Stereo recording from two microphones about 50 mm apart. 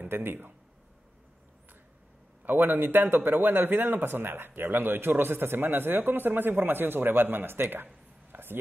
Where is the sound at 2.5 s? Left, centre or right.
Right.